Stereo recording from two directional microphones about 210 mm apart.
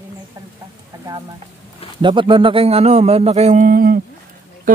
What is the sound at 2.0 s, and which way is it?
Speech, 25° right (ahead or behind).